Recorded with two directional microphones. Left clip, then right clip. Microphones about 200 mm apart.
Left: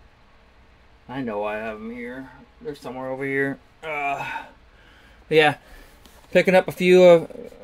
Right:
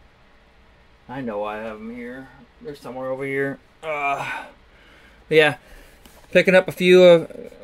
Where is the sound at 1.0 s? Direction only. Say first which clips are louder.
Even; 5° left (ahead or behind).